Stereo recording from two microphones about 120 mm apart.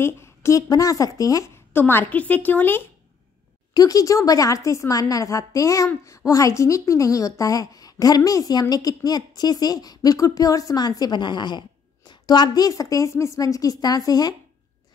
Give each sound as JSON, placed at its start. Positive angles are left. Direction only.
{"t": 0.0, "sound": "a woman's voice", "side_deg": 20}
{"t": 1.7, "sound": "a woman's voice", "side_deg": 20}
{"t": 3.7, "sound": "a woman's voice", "side_deg": 30}